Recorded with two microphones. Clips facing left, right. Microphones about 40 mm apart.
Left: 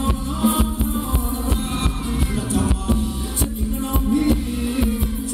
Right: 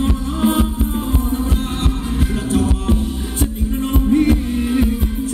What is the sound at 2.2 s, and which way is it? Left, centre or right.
Music, right.